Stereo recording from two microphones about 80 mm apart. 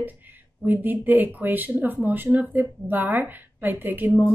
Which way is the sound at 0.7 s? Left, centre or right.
Right.